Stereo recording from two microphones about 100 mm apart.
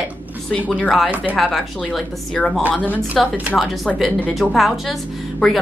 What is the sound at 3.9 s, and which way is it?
Speech, centre (ahead or behind).